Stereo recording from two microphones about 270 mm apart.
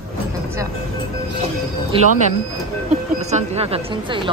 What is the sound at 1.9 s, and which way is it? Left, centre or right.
Speech, centre.